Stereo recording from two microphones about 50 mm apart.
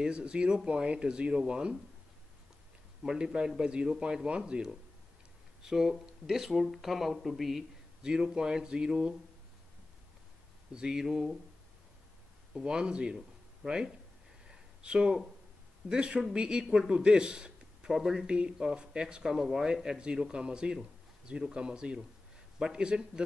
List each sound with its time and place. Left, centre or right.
0.0 s speech: right
3.0 s speech: centre
8.0 s speech: centre
10.7 s speech: centre
12.5 s speech: centre
13.6 s speech: centre
14.5 s a sound: centre
15.9 s a man's voice: centre
17.9 s speech: centre
18.2 s speech: centre